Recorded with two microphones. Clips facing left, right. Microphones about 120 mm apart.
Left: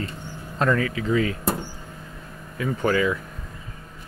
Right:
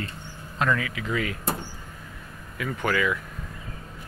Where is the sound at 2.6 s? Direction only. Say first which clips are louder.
Left 4 dB; 30° left (ahead or behind).